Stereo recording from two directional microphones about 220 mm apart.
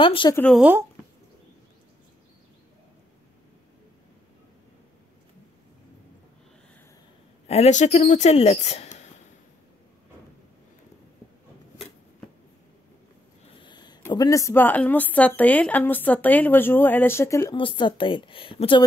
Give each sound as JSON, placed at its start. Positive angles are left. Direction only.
{"t": 0.0, "sound": "speech", "side_deg": 20}
{"t": 0.4, "sound": "speech", "side_deg": 0}
{"t": 7.4, "sound": "speech", "side_deg": 30}
{"t": 13.6, "sound": "speech", "side_deg": 20}